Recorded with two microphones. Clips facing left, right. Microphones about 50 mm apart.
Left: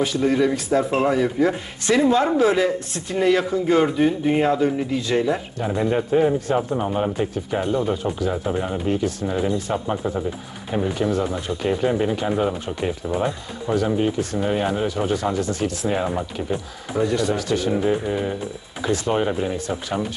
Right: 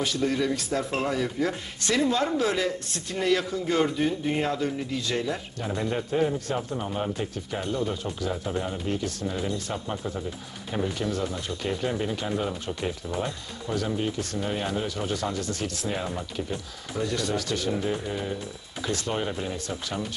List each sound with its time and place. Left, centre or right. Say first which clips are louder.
0.0 s speech: left 7 dB; centre